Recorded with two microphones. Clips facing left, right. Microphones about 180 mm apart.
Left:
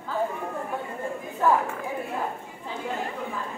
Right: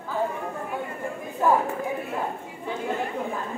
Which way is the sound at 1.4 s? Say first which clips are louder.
Right 1 dB; 15° right (ahead or behind).